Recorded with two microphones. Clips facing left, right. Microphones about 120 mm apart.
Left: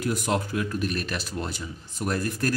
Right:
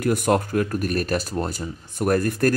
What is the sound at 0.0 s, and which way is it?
Speech, 55° right (ahead or behind).